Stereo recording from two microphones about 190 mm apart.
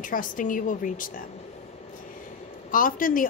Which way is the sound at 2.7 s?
45° left (ahead or behind).